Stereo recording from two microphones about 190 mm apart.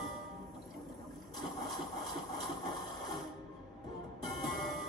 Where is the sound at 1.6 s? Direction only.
Centre (ahead or behind).